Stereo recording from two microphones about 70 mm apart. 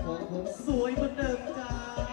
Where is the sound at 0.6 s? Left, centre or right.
Centre.